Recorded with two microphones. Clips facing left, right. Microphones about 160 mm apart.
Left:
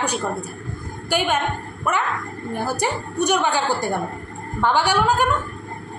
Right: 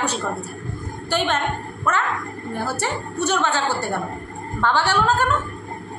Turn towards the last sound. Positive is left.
turn(degrees=15)  # may be behind; listen again after turning